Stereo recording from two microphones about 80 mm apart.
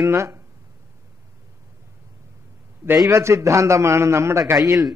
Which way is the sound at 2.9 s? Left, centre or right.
Right.